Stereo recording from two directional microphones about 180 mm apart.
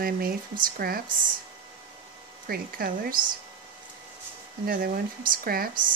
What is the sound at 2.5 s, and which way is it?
Speech, 55° right (ahead or behind).